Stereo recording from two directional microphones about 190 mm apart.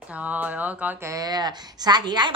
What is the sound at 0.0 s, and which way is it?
Speech, 5° right (ahead or behind).